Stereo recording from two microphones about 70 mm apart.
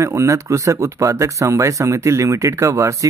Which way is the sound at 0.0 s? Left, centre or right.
Right.